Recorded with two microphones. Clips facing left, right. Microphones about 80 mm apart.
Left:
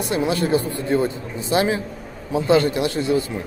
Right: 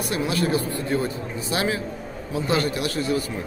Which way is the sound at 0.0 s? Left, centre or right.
Left.